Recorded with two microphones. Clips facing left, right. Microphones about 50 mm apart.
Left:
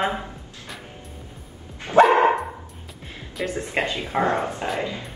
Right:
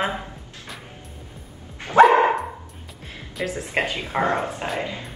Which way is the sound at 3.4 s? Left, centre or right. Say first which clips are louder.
Even; centre.